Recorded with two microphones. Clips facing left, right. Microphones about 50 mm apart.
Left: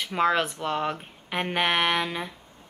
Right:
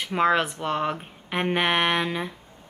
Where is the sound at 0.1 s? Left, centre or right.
Centre.